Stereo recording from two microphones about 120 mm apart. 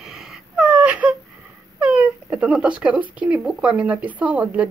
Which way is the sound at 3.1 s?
10° right (ahead or behind).